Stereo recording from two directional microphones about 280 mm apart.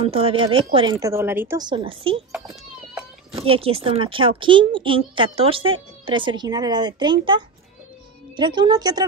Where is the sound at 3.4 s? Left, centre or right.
Centre.